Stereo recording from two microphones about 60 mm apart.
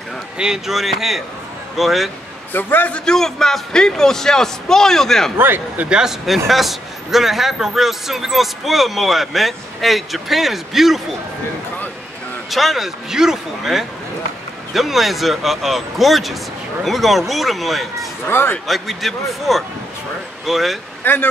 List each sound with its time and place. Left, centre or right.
0.4 s a man's voice: centre
2.5 s speech: left
3.1 s a man's voice: centre
5.4 s speech: right
5.9 s a man's voice: centre
12.4 s a man's voice: centre
18.2 s speech: left
18.7 s a man's voice: centre
21.0 s speech: left